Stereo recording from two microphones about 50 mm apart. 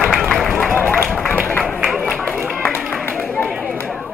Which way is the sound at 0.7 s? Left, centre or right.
Left.